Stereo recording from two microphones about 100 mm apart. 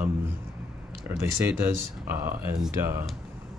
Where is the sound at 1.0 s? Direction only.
20° right (ahead or behind).